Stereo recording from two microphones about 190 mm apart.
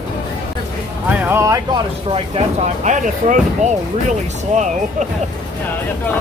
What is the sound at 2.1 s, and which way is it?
Speech, 35° right (ahead or behind).